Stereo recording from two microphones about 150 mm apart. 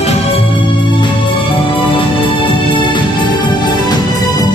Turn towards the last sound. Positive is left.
turn(degrees=25)  # may be behind; listen again after turning